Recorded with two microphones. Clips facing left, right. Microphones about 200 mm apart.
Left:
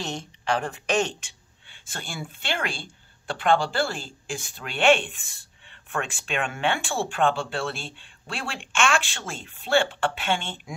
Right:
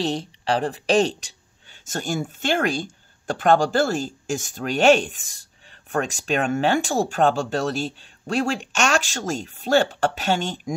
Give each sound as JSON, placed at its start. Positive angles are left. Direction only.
{"t": 0.0, "sound": "speech", "side_deg": -35}